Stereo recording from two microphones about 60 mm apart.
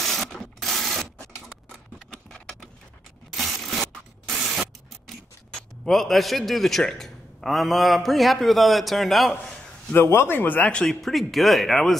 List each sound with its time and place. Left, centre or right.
0.0 s a sound: centre
0.4 s rub: centre
3.3 s rub: centre
5.0 s speech: centre
9.3 s a sound: centre
9.9 s speech: left
10.7 s speech: centre
11.0 s speech: centre